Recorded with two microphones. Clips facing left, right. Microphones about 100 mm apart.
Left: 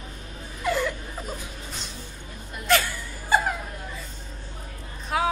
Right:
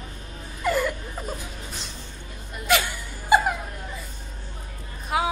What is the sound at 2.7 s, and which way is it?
Whimper, 15° right (ahead or behind).